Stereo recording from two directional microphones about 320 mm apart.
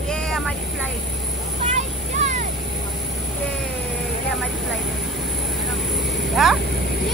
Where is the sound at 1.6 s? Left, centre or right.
Right.